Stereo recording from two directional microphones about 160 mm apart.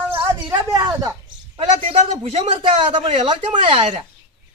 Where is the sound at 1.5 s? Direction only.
40° right (ahead or behind).